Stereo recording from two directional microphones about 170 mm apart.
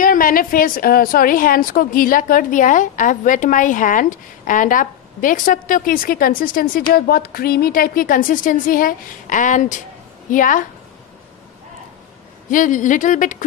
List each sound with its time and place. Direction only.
0.0 s a woman's voice: 55° left (ahead or behind)
12.4 s speech: 50° left (ahead or behind)